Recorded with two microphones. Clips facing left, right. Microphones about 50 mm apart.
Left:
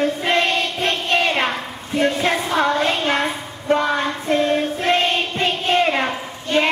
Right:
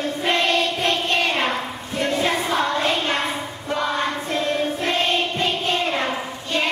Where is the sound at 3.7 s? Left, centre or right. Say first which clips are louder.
Left 7 dB; left.